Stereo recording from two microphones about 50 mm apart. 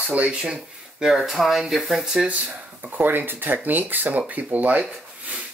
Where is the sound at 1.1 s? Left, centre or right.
Centre.